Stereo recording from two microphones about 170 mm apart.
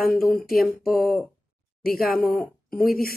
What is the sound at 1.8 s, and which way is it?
Speech, 60° left (ahead or behind).